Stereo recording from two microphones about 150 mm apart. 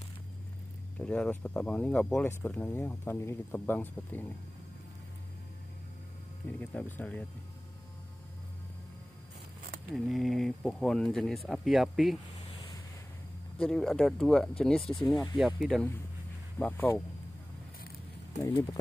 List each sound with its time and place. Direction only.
0.9 s speech: 5° left (ahead or behind)
6.6 s speech: 10° left (ahead or behind)
9.9 s speech: centre (ahead or behind)
13.6 s speech: centre (ahead or behind)
16.5 s speech: 10° left (ahead or behind)
18.4 s speech: 25° left (ahead or behind)